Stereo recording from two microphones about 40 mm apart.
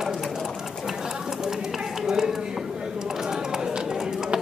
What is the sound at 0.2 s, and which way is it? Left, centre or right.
Bird, centre.